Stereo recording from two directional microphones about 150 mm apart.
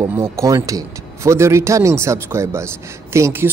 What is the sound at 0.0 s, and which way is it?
Speech, 15° right (ahead or behind).